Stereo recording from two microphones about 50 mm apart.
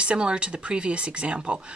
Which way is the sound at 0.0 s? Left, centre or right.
Right.